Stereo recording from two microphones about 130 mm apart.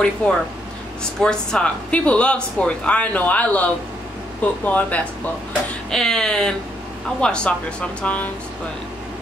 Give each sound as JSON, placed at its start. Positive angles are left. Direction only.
{"t": 0.2, "sound": "speech", "side_deg": 10}